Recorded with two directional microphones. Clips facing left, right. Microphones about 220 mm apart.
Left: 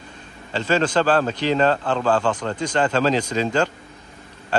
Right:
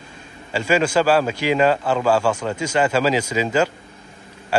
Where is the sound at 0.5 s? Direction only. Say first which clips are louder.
Right 2 dB; 10° right (ahead or behind).